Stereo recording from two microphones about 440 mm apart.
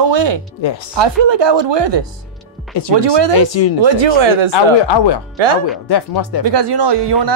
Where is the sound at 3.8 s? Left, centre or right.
Right.